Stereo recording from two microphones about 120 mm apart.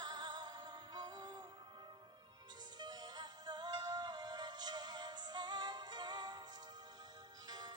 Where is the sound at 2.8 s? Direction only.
35° right (ahead or behind).